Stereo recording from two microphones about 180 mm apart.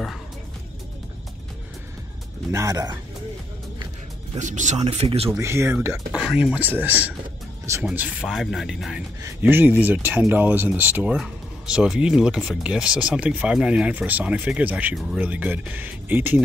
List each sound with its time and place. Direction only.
2.5 s speech: 20° right (ahead or behind)
4.4 s speech: 40° right (ahead or behind)
5.3 s speech: 15° right (ahead or behind)
6.1 s speech: 5° right (ahead or behind)